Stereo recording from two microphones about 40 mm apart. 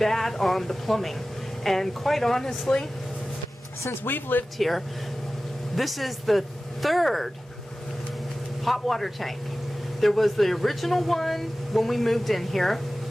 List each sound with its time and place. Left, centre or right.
0.0 s speech: centre
4.0 s speech: left
4.6 s speech: centre
8.6 s speech: centre